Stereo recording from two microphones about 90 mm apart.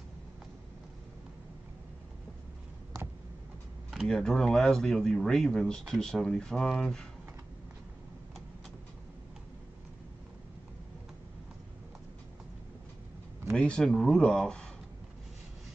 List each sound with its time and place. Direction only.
4.1 s speech: 5° left (ahead or behind)
13.6 s speech: 10° left (ahead or behind)